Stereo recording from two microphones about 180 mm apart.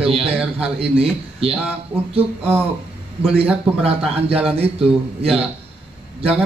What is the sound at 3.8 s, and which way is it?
Speech, 35° right (ahead or behind).